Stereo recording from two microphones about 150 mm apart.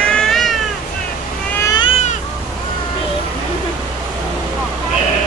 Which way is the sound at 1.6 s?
25° left (ahead or behind).